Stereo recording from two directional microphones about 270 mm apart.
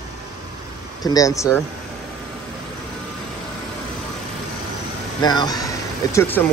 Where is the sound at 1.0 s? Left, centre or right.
Centre.